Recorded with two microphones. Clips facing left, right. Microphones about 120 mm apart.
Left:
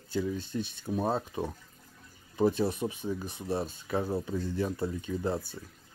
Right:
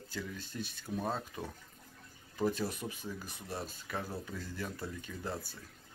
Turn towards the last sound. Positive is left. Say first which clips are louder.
# left 9 dB
turn(degrees=25)  # may be behind; listen again after turning